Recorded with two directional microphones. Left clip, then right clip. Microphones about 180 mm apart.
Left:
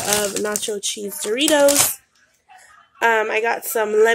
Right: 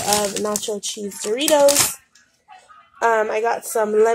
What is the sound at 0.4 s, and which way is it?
Speech, 10° left (ahead or behind).